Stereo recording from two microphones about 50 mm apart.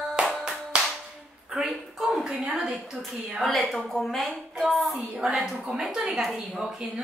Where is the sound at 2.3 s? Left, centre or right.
Right.